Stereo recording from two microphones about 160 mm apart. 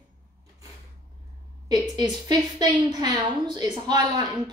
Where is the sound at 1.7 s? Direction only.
25° right (ahead or behind).